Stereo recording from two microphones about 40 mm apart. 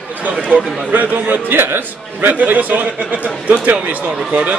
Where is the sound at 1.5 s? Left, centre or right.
Right.